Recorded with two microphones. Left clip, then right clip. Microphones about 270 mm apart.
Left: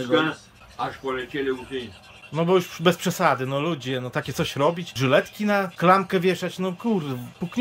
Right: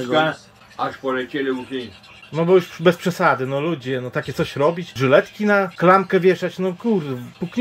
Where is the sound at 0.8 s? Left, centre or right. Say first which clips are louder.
Right 5 dB; centre.